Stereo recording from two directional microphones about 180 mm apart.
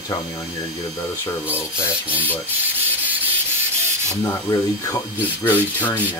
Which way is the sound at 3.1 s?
10° right (ahead or behind).